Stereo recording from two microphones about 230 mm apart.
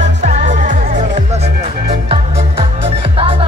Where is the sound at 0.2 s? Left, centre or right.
Right.